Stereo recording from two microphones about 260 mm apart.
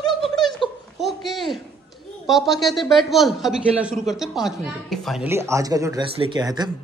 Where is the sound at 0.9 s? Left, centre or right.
Centre.